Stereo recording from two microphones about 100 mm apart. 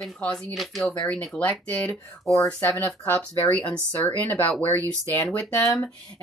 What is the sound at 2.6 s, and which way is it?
Speech, 15° left (ahead or behind).